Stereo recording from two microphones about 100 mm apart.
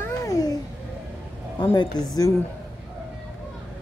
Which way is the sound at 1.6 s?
45° left (ahead or behind).